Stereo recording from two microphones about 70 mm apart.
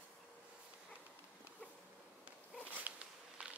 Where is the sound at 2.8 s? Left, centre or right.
Centre.